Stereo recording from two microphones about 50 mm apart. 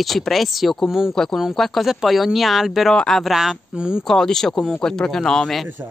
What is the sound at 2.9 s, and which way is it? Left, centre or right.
Speech, centre.